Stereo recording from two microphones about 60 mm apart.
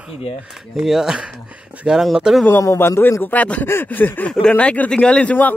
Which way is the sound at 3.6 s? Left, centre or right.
Left.